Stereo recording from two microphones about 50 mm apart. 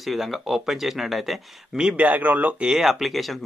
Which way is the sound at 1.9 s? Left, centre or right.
Right.